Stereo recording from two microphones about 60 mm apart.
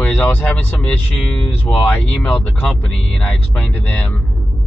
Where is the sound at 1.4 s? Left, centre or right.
Left.